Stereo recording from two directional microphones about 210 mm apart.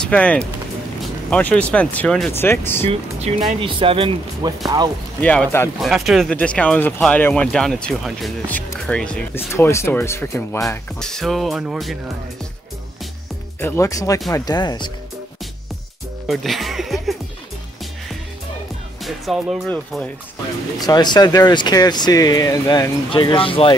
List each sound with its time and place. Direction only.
0.1 s speech: 5° left (ahead or behind)
2.9 s speech: 30° right (ahead or behind)
5.2 s speech: 5° left (ahead or behind)
13.6 s speech: 10° left (ahead or behind)
16.3 s speech: centre (ahead or behind)
19.0 s speech: centre (ahead or behind)
20.8 s speech: 20° left (ahead or behind)